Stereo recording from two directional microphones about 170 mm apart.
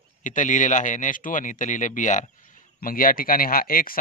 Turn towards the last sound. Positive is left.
turn(degrees=55)  # may be behind; listen again after turning